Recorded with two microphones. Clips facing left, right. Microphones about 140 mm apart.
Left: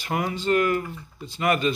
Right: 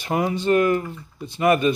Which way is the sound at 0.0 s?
25° right (ahead or behind).